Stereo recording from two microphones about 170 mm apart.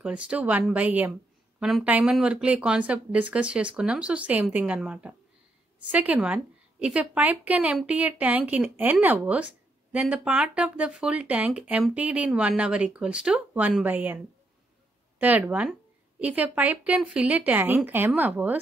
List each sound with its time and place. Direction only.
0.0 s speech: 5° right (ahead or behind)